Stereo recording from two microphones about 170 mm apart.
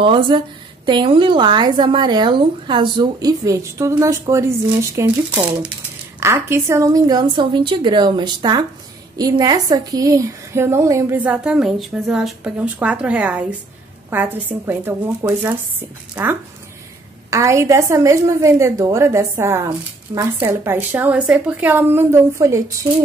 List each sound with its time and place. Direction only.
0.0 s a woman's voice: 30° right (ahead or behind); by 15.5 s 10° right (ahead or behind)
17.3 s a woman's voice: 15° right (ahead or behind)